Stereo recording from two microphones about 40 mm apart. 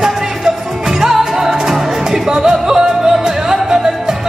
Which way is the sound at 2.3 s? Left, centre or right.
Centre.